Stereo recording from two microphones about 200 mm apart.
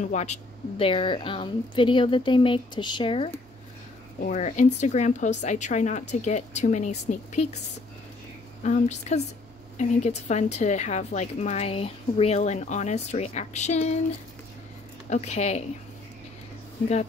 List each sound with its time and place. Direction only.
0.0 s a woman's voice: 35° left (ahead or behind)
8.6 s a woman's voice: 35° left (ahead or behind)
15.0 s a woman's voice: 35° left (ahead or behind)